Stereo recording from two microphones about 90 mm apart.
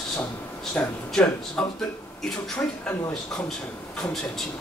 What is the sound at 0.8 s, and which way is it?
Speech, 20° left (ahead or behind).